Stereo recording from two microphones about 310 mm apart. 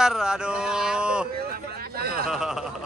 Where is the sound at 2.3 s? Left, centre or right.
Centre.